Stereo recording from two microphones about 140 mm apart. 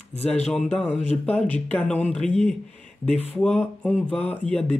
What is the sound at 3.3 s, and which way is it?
Speech, 5° left (ahead or behind).